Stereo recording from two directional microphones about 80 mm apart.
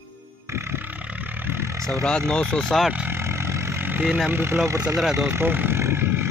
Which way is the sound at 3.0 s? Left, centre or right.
Right.